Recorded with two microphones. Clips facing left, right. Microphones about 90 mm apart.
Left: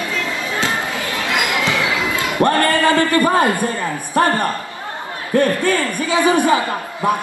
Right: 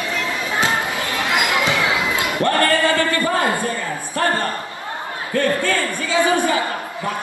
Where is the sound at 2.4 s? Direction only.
20° left (ahead or behind).